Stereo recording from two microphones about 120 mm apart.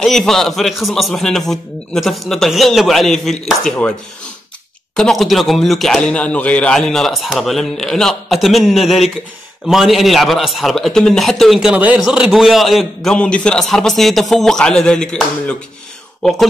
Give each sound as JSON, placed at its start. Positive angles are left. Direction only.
{"t": 0.0, "sound": "a man's voice", "side_deg": 5}
{"t": 4.9, "sound": "a man's voice", "side_deg": 5}